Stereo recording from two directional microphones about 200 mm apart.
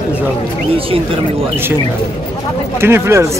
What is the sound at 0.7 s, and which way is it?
Speech, 25° right (ahead or behind).